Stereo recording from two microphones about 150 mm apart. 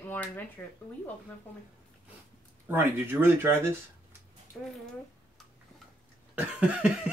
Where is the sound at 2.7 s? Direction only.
15° right (ahead or behind).